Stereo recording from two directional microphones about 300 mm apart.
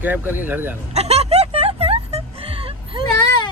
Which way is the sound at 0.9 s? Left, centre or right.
Right.